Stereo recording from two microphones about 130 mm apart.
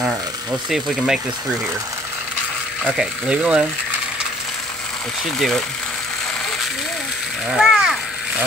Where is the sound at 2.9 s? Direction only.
Centre (ahead or behind).